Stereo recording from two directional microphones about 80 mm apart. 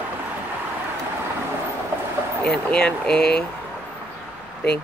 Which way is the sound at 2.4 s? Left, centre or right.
Centre.